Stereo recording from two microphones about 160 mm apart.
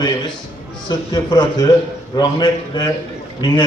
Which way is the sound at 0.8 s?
25° left (ahead or behind).